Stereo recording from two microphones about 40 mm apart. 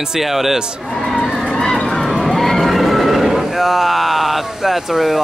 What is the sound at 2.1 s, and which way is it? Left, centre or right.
Vehicle, centre.